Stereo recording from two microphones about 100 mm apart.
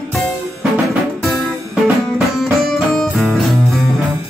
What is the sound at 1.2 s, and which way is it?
Music, centre (ahead or behind).